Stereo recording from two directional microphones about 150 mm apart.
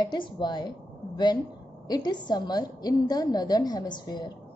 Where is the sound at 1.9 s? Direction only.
30° left (ahead or behind).